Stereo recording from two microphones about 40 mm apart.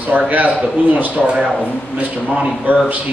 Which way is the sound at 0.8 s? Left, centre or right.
Right.